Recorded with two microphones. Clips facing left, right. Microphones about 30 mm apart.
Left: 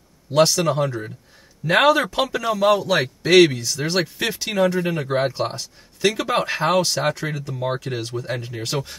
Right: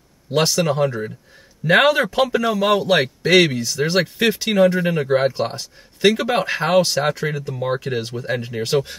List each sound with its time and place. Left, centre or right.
0.4 s a man's voice: centre
2.8 s a man's voice: right
3.3 s speech: centre
5.9 s speech: right
6.2 s speech: centre